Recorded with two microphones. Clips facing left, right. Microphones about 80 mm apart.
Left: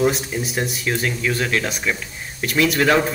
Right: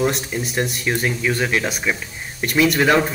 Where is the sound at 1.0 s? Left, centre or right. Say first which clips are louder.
Right 2 dB; centre.